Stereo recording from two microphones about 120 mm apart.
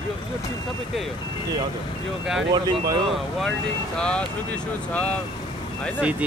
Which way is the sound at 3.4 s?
5° left (ahead or behind).